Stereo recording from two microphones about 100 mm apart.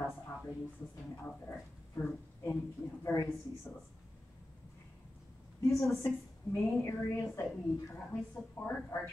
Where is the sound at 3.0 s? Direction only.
25° left (ahead or behind).